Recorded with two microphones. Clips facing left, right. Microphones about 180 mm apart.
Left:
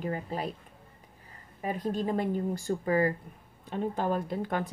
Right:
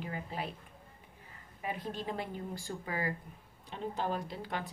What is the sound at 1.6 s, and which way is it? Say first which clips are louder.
Speech: left 8 dB; 40° left (ahead or behind).